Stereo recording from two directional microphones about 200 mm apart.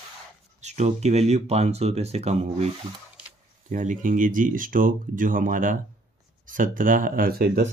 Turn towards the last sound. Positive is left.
turn(degrees=-50)  # may be behind; listen again after turning